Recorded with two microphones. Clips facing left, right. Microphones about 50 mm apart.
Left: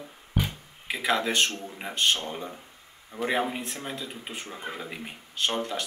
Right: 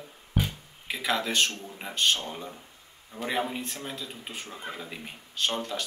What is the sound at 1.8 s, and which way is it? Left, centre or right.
Speech, centre.